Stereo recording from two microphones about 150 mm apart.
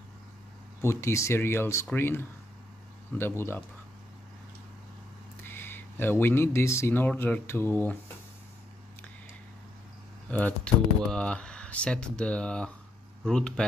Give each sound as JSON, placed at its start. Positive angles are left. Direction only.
{"t": 0.8, "sound": "speech", "side_deg": 20}
{"t": 5.4, "sound": "speech", "side_deg": 15}
{"t": 10.3, "sound": "speech", "side_deg": 10}